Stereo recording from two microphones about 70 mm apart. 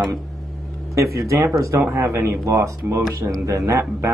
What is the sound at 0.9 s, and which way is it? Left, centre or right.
Speech, right.